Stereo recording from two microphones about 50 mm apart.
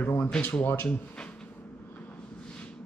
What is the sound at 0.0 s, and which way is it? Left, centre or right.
Speech, left.